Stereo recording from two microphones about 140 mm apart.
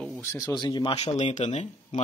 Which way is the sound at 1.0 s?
55° left (ahead or behind).